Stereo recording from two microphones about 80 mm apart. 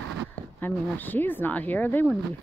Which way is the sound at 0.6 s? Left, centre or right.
Left.